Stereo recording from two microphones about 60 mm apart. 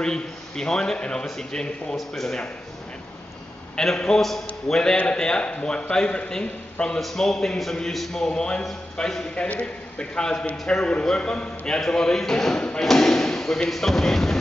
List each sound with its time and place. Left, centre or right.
0.0 s speech: centre
3.7 s speech: centre
7.0 s speech: centre
8.3 s speech: centre